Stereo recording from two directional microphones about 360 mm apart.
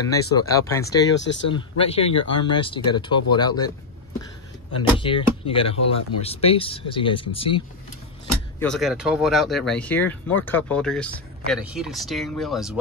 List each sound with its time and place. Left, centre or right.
0.1 s speech: centre
1.1 s speech: left
1.5 s speech: centre
4.9 s speech: centre
8.5 s speech: centre